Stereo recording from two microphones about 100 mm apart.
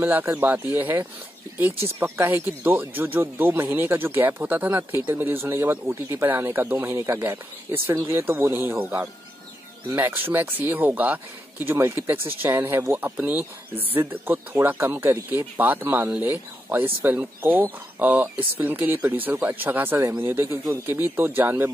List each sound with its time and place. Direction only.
0.0 s speech: 20° right (ahead or behind)